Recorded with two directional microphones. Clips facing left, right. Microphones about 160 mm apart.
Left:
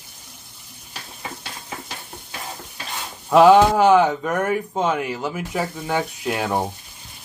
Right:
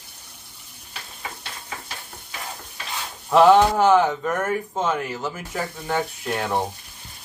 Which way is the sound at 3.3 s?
5° left (ahead or behind).